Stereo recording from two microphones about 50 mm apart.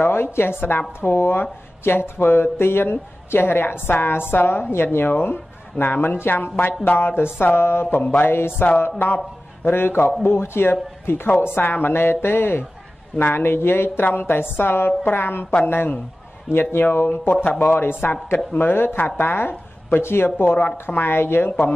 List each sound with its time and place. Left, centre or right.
0.0 s a woman's voice: left
7.9 s mantra: left
8.3 s a woman's voice: left
17.5 s a woman's voice: left